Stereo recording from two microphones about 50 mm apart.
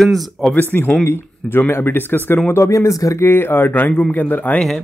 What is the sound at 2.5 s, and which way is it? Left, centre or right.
Speech, left.